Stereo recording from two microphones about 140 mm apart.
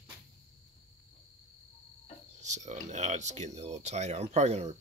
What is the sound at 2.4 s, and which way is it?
Speech, 60° right (ahead or behind).